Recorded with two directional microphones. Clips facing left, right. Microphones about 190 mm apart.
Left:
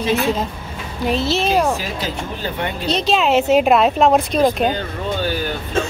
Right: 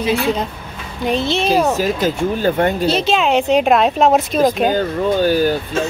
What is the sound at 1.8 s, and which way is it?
Speech, 45° right (ahead or behind).